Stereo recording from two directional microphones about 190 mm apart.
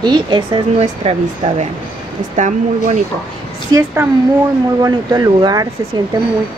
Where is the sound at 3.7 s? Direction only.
10° right (ahead or behind).